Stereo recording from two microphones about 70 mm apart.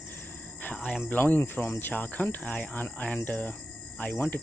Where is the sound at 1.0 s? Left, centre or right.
Left.